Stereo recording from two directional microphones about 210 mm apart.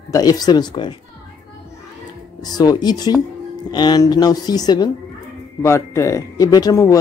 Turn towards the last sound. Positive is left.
turn(degrees=15)  # may be behind; listen again after turning